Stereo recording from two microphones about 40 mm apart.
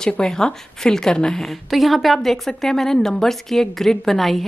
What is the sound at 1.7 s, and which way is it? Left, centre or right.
A woman's voice, centre.